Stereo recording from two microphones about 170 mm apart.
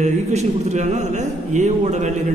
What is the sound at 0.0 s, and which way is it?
A man's voice, 40° right (ahead or behind).